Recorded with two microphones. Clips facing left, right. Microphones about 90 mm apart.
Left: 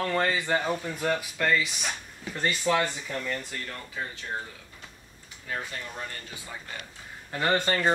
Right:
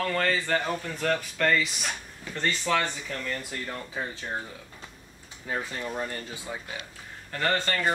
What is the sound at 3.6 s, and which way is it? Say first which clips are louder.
Speech: right 2 dB; 25° right (ahead or behind).